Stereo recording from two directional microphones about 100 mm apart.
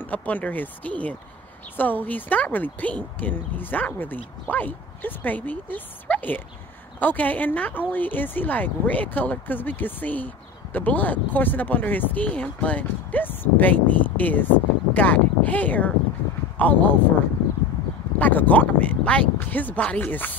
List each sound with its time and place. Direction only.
0.0 s speech: 15° left (ahead or behind)
18.2 s speech: 15° left (ahead or behind)